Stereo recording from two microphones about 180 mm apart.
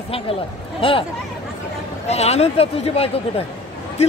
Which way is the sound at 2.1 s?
35° left (ahead or behind).